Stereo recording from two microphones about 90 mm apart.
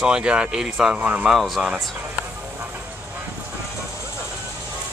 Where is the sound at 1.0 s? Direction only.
15° right (ahead or behind).